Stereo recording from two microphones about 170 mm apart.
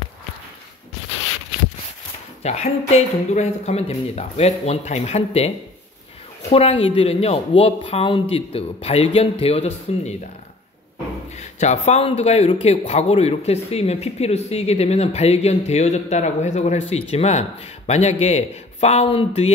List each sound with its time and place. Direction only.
2.4 s a man's voice: 40° left (ahead or behind)
6.5 s a man's voice: 35° left (ahead or behind)
11.3 s a man's voice: 40° left (ahead or behind)